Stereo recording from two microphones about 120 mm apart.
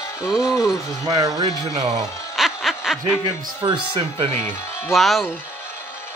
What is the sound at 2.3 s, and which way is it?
Snicker, 5° right (ahead or behind).